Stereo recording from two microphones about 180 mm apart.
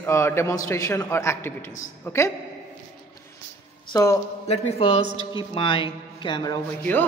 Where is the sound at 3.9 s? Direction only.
20° left (ahead or behind).